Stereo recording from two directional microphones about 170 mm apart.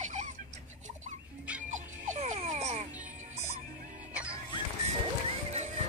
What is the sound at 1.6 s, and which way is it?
Music, 45° right (ahead or behind).